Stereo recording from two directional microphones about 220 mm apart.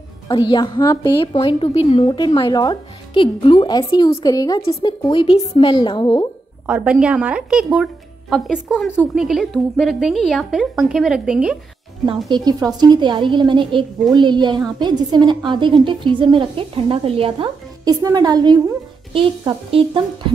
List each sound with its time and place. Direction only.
0.3 s a woman's voice: 20° left (ahead or behind)
6.6 s a woman's voice: 5° right (ahead or behind)
12.4 s a woman's voice: 15° right (ahead or behind)